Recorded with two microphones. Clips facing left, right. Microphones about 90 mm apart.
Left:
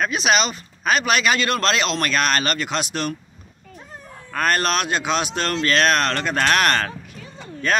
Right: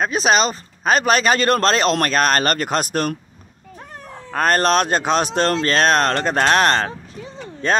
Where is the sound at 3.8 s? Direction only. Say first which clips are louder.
Right 3 dB; 65° right (ahead or behind).